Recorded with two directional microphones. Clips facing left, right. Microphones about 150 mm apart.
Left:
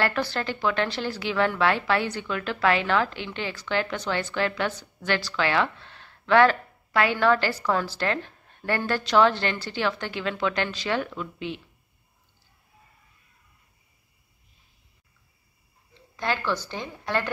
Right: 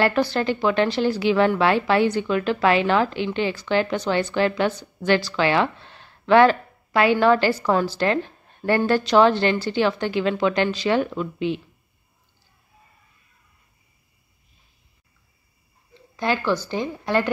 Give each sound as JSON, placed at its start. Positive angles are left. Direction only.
{"t": 0.0, "sound": "speech", "side_deg": -20}
{"t": 16.2, "sound": "a woman's voice", "side_deg": -5}